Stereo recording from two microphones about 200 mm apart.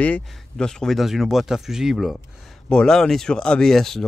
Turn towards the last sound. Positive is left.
turn(degrees=0)  # may be behind; listen again after turning